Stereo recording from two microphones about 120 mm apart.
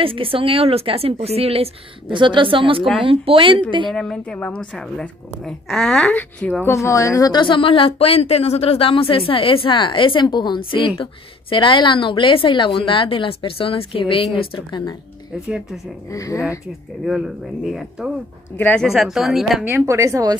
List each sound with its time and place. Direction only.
0.0 s a woman's voice: 50° right (ahead or behind)
2.1 s a woman's voice: 40° right (ahead or behind)
3.9 s speech: 5° left (ahead or behind)
6.6 s speech: 25° left (ahead or behind); by 15.0 s 45° left (ahead or behind)
15.4 s speech: 10° right (ahead or behind)
16.1 s speech: 25° left (ahead or behind)
17.0 s speech: 5° right (ahead or behind)
19.6 s a woman's voice: 20° right (ahead or behind)